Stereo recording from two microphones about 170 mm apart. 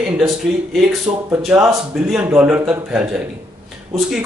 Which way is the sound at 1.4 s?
5° right (ahead or behind).